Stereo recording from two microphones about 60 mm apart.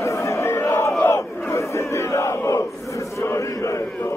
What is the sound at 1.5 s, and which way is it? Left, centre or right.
Crowd, left.